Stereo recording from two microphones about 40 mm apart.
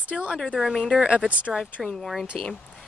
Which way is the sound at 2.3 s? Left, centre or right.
Left.